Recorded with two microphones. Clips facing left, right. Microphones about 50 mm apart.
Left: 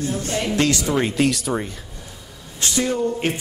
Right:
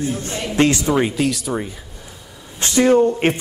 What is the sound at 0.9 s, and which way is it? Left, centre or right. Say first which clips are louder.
Speech: right 1 dB; centre.